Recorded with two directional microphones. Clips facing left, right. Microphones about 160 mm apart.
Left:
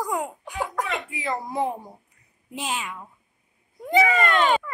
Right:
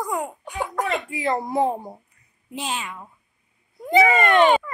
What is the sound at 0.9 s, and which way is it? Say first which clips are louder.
Speech: right 5 dB; 30° right (ahead or behind).